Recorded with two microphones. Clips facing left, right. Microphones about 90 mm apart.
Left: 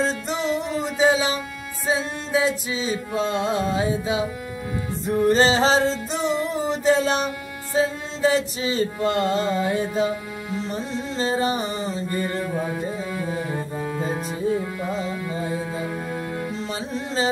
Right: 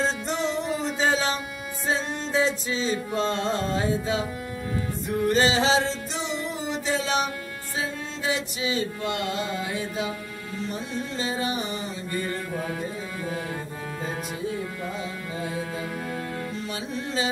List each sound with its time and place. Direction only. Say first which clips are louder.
0.3 s music: left 2 dB; centre (ahead or behind)
0.9 s a sound: left 6 dB; 10° left (ahead or behind)
1.9 s music: left 3 dB; 10° left (ahead or behind)
5.1 s music: left 4 dB; 35° left (ahead or behind)
13.4 s music: left 5 dB; 5° left (ahead or behind)